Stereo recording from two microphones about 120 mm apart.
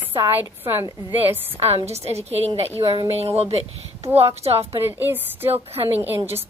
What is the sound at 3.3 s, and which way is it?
Speech, 60° right (ahead or behind).